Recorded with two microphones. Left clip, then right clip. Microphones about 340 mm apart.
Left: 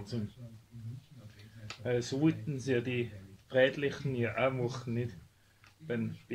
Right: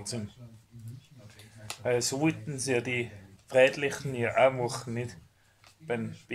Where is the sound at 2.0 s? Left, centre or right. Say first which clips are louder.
Right 2 dB; right.